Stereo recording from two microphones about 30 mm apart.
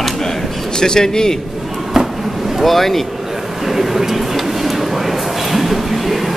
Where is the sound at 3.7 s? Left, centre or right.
Centre.